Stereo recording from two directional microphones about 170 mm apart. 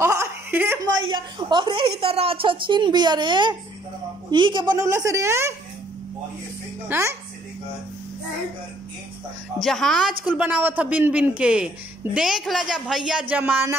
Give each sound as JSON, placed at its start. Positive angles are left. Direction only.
{"t": 0.0, "sound": "chuckle", "side_deg": -15}
{"t": 0.8, "sound": "a woman's voice", "side_deg": -25}
{"t": 6.9, "sound": "speech", "side_deg": -15}
{"t": 9.6, "sound": "a woman's voice", "side_deg": 0}